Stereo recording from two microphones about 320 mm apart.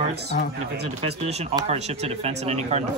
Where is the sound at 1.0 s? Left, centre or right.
Centre.